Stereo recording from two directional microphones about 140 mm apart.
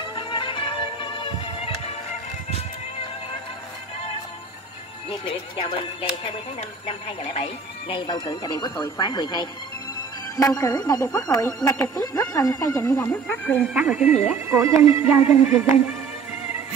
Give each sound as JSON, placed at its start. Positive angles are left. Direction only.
{"t": 0.1, "sound": "music", "side_deg": 35}
{"t": 5.2, "sound": "speech", "side_deg": 45}
{"t": 11.7, "sound": "speech", "side_deg": 10}
{"t": 12.1, "sound": "speech", "side_deg": 25}
{"t": 13.3, "sound": "speech", "side_deg": 10}
{"t": 13.6, "sound": "speech", "side_deg": -10}